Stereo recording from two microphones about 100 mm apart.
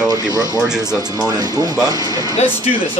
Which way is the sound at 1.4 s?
40° right (ahead or behind).